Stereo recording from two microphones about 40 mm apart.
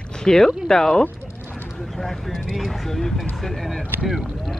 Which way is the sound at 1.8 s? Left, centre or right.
Centre.